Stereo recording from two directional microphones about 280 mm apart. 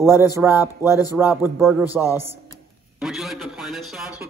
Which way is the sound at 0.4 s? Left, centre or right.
Centre.